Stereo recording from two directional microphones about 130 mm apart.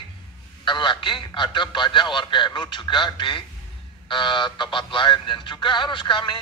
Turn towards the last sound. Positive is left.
turn(degrees=35)  # may be behind; listen again after turning